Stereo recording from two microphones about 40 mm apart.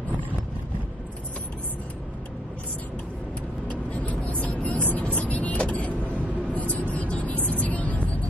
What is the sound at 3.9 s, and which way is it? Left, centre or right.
Vehicle, left.